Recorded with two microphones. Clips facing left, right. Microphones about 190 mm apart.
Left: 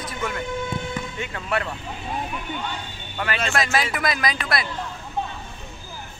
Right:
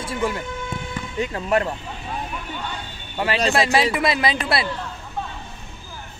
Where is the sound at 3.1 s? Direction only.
30° right (ahead or behind).